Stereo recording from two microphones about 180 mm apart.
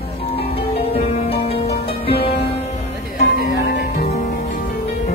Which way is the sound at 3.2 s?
70° left (ahead or behind).